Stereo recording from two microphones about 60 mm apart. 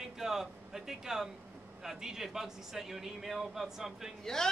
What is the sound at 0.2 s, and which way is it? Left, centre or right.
A man's voice, centre.